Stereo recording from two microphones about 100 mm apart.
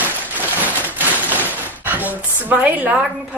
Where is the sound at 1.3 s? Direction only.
15° right (ahead or behind).